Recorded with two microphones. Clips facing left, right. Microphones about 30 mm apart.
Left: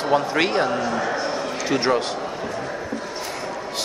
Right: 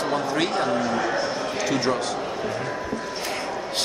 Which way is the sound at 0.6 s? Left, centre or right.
Centre.